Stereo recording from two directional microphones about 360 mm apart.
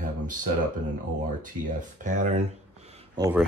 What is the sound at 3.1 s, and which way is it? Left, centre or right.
Speech, centre.